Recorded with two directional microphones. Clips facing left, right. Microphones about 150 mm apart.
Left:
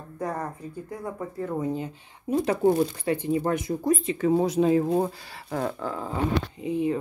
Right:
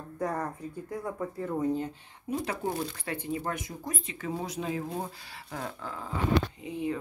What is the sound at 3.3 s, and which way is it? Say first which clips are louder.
Speech: left 9 dB; 30° left (ahead or behind).